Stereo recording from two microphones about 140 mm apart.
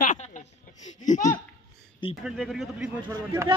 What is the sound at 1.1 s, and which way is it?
Speech, 60° left (ahead or behind).